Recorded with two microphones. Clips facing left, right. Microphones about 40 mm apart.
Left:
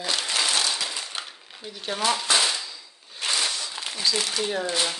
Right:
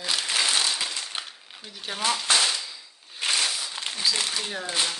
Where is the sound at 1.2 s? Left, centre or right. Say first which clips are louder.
Left 1 dB; centre.